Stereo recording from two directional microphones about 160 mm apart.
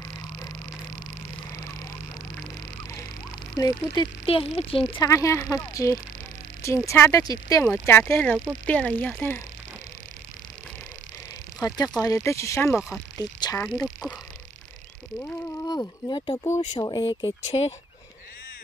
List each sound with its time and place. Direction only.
3.5 s speech: 25° left (ahead or behind)
4.9 s speech: 20° left (ahead or behind)
11.6 s speech: 20° left (ahead or behind)
13.6 s speech: 10° left (ahead or behind)
15.1 s speech: 10° left (ahead or behind)
15.6 s speech: 25° left (ahead or behind)